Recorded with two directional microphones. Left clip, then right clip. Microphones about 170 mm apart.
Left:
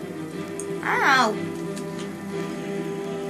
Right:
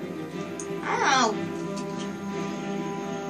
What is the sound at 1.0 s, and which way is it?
Music, 55° left (ahead or behind).